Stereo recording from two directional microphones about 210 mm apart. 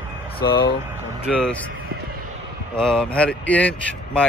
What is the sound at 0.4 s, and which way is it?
Speech, 50° left (ahead or behind).